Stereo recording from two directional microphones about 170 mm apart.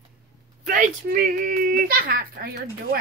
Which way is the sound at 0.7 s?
55° right (ahead or behind).